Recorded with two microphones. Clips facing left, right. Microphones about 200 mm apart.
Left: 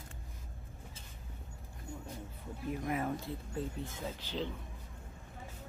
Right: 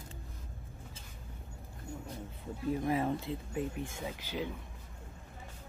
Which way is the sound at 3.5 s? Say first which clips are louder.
Right 2 dB; 15° right (ahead or behind).